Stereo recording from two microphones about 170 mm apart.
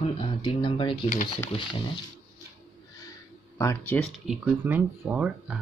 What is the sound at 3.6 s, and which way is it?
Speech, 15° left (ahead or behind).